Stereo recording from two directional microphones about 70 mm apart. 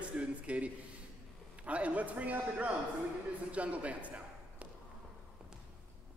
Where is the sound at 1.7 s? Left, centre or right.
Centre.